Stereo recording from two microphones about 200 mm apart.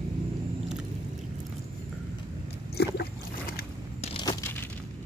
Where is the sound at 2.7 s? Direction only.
50° left (ahead or behind).